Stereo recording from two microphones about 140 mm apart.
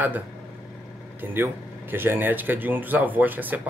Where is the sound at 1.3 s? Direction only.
15° right (ahead or behind).